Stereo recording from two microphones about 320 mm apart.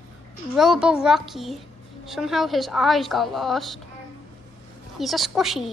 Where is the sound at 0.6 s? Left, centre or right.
Centre.